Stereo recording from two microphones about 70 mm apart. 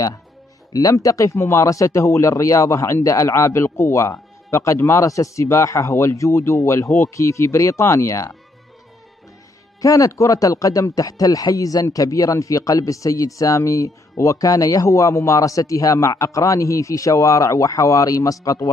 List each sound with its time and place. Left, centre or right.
0.7 s speech: left
5.0 s speech: left
9.8 s speech: left